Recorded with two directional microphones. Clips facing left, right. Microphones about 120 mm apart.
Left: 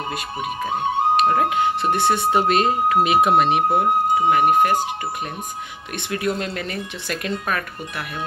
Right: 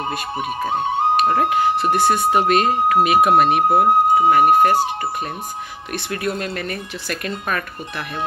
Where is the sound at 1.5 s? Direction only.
25° left (ahead or behind).